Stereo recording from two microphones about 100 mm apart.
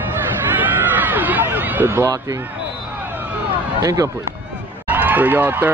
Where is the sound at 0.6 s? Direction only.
15° right (ahead or behind).